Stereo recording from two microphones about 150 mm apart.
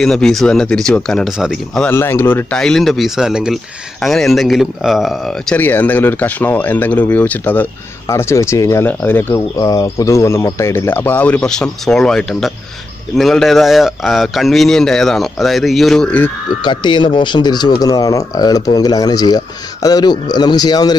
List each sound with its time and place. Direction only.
0.0 s speech: 5° left (ahead or behind)
1.9 s speech: 15° left (ahead or behind)
2.6 s speech: centre (ahead or behind)
9.6 s speech: 25° left (ahead or behind); by 16.3 s 5° left (ahead or behind)
16.6 s speech: 30° left (ahead or behind)